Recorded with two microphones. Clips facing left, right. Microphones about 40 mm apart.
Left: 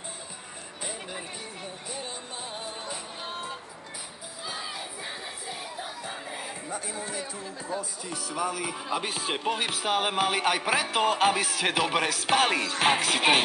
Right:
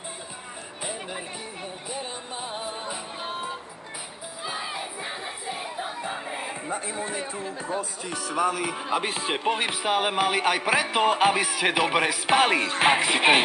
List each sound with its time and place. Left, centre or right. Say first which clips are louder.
1.9 s music: right 4 dB; centre
4.5 s crowd: right 4 dB; right
8.8 s speech: right 3 dB; right
12.8 s music: right 3 dB; centre